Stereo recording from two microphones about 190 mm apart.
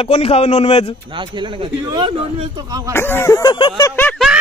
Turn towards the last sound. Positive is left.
turn(degrees=5)  # may be behind; listen again after turning